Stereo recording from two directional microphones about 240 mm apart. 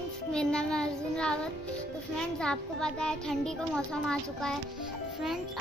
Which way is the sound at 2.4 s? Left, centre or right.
Centre.